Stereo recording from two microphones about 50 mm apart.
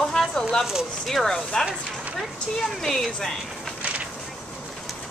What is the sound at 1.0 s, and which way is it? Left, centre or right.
A woman's voice, centre.